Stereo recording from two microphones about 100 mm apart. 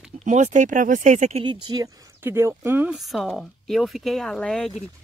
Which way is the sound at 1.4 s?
50° right (ahead or behind).